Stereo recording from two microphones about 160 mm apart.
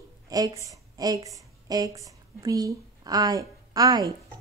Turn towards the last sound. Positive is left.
turn(degrees=-25)  # may be behind; listen again after turning